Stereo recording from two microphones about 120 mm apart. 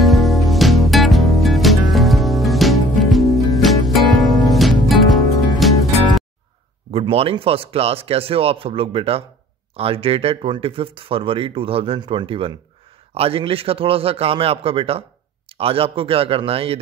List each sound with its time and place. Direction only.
0.0 s music: centre (ahead or behind)
6.9 s speech: 55° right (ahead or behind)